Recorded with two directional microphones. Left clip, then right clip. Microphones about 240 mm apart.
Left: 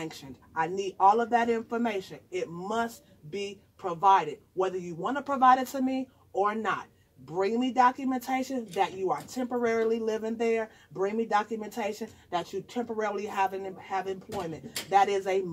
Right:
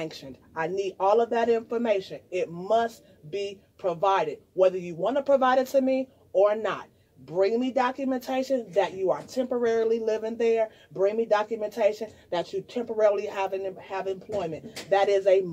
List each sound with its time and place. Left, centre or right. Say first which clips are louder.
0.0 s a man's voice: right 4 dB; left